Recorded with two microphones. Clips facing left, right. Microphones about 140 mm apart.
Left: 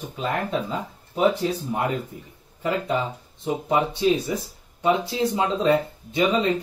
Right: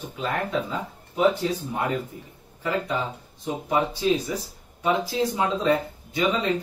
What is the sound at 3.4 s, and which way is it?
Speech, 25° left (ahead or behind).